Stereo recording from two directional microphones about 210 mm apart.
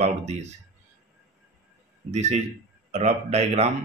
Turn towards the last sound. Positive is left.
turn(degrees=-30)  # may be behind; listen again after turning